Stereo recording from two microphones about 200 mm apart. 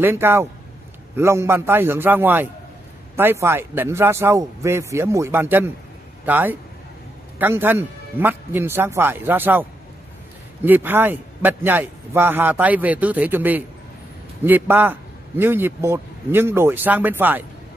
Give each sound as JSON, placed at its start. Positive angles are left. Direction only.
{"t": 0.0, "sound": "a man's voice", "side_deg": -10}